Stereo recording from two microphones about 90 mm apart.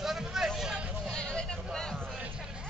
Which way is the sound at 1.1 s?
10° left (ahead or behind).